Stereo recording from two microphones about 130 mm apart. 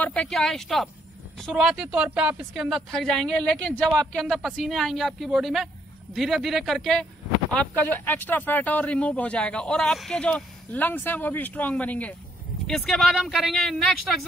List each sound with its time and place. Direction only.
0.0 s a woman's voice: 10° left (ahead or behind)